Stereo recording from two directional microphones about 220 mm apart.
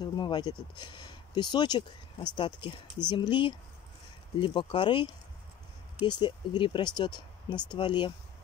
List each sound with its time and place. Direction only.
0.0 s speech: 20° left (ahead or behind)